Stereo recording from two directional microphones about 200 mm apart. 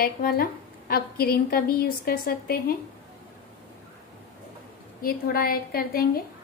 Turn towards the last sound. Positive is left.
turn(degrees=50)  # may be behind; listen again after turning